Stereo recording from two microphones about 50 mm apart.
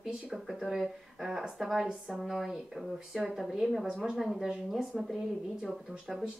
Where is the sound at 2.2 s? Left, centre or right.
Centre.